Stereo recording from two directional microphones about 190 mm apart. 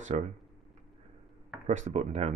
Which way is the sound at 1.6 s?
40° right (ahead or behind).